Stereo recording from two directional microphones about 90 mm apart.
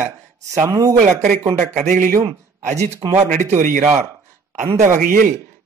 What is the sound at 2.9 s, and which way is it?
Speech, 45° right (ahead or behind).